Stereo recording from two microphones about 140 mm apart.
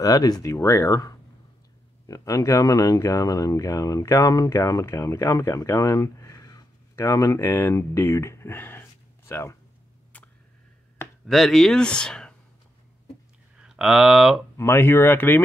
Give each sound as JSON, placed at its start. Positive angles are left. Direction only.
{"t": 0.0, "sound": "speech", "side_deg": 25}
{"t": 10.1, "sound": "tick", "side_deg": 10}
{"t": 11.2, "sound": "speech", "side_deg": 0}
{"t": 13.6, "sound": "speech", "side_deg": -5}
{"t": 14.6, "sound": "speech", "side_deg": 20}